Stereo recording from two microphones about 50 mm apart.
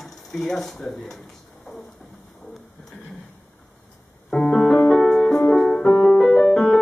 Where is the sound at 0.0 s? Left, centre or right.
Centre.